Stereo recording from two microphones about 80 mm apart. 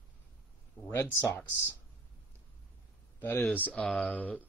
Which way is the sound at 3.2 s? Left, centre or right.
Left.